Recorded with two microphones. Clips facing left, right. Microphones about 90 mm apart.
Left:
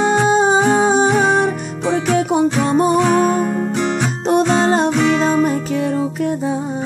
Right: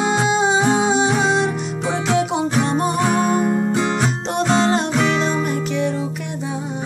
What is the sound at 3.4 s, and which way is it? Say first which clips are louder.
Music: even; 10° right (ahead or behind).